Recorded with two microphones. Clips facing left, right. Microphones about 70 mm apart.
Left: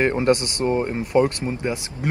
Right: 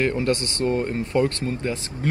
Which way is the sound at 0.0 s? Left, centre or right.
Left.